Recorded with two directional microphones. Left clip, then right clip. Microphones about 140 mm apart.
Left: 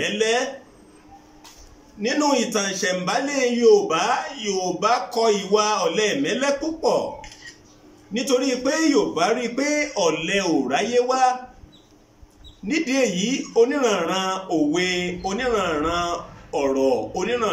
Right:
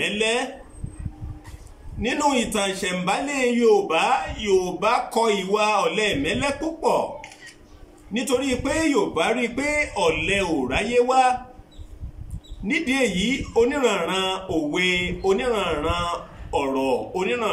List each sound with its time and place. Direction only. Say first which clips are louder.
0.0 s speech: left 1 dB; 20° right (ahead or behind)
2.0 s speech: left 1 dB; 25° right (ahead or behind)
8.1 s speech: left 2 dB; 25° right (ahead or behind)
12.6 s speech: left 1 dB; 25° right (ahead or behind)